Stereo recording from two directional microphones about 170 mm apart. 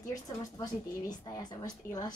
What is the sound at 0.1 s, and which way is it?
Speech, 20° left (ahead or behind).